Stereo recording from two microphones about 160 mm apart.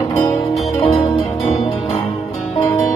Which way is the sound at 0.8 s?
35° left (ahead or behind).